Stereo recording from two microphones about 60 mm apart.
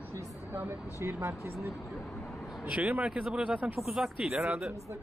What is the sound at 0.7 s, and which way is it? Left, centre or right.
Speech, right.